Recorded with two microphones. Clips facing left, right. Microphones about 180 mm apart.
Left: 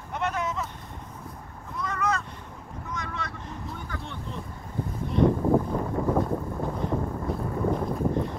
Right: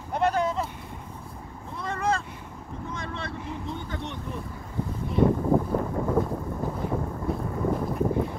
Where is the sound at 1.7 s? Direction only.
30° right (ahead or behind).